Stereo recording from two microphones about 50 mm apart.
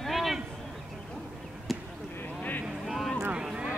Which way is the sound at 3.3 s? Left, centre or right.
Centre.